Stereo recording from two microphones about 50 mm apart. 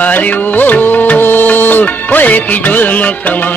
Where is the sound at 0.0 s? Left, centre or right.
Left.